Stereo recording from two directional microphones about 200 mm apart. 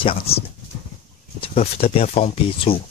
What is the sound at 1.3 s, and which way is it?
Speech, 30° left (ahead or behind).